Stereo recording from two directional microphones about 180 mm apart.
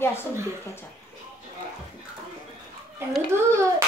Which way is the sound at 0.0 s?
15° left (ahead or behind).